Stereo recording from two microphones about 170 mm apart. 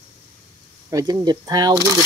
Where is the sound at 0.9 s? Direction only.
20° right (ahead or behind).